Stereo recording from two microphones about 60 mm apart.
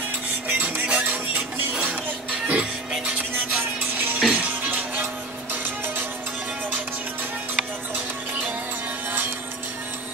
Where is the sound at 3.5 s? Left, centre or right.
Right.